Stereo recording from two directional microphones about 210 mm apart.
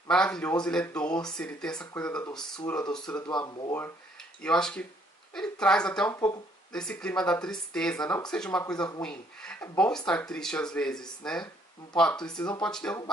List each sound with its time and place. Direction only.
0.1 s speech: 5° left (ahead or behind)
3.2 s speech: 20° left (ahead or behind)
4.4 s speech: 5° left (ahead or behind)